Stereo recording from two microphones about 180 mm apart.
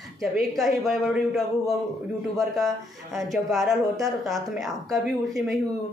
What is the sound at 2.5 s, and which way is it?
Speech, centre (ahead or behind).